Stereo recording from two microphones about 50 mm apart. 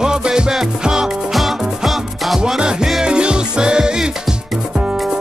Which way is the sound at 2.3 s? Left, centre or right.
Centre.